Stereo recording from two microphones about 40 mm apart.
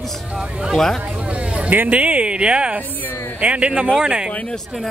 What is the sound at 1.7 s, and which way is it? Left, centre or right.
Speech, right.